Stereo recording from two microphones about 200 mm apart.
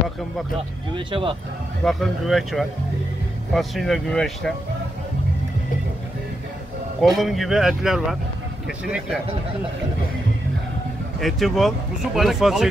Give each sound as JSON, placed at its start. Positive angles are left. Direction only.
{"t": 0.9, "sound": "speech", "side_deg": -25}
{"t": 1.9, "sound": "speech", "side_deg": 0}
{"t": 7.0, "sound": "speech", "side_deg": 0}
{"t": 11.1, "sound": "speech", "side_deg": 0}